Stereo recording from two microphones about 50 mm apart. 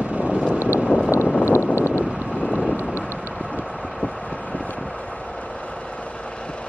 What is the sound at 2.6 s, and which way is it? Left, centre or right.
Vehicle, right.